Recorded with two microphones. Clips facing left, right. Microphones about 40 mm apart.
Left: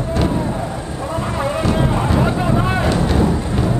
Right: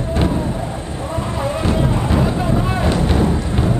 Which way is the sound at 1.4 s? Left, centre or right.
Left.